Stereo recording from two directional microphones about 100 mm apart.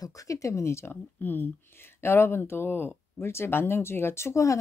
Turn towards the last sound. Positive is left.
turn(degrees=30)  # may be behind; listen again after turning